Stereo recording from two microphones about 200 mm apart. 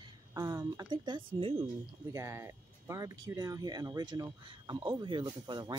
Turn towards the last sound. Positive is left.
turn(degrees=-20)  # may be behind; listen again after turning